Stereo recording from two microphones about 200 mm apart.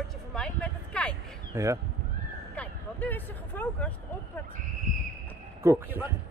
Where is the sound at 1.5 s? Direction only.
15° right (ahead or behind).